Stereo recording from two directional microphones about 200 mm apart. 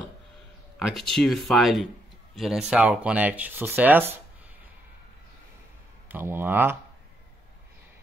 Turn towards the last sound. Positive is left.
turn(degrees=-10)  # may be behind; listen again after turning